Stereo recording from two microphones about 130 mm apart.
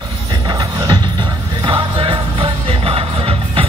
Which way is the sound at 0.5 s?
30° right (ahead or behind).